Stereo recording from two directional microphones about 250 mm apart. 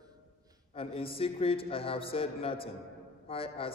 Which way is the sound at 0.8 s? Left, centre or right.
Left.